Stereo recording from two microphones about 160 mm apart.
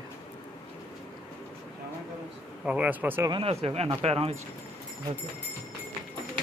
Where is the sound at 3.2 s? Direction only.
35° right (ahead or behind).